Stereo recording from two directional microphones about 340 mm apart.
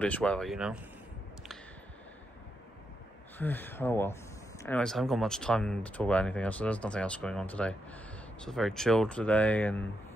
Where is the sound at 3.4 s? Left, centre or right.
Centre.